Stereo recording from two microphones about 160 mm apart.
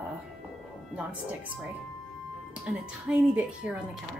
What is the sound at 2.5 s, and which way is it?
Speech, 5° right (ahead or behind).